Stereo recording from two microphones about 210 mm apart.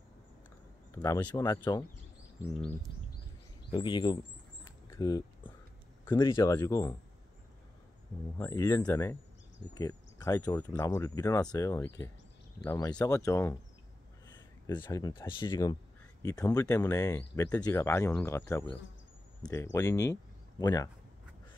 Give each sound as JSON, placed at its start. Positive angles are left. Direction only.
{"t": 0.9, "sound": "speech", "side_deg": 15}
{"t": 3.7, "sound": "speech", "side_deg": 20}
{"t": 4.8, "sound": "keys jangling", "side_deg": 15}
{"t": 6.1, "sound": "speech", "side_deg": 15}
{"t": 8.4, "sound": "speech", "side_deg": 15}
{"t": 14.8, "sound": "speech", "side_deg": 20}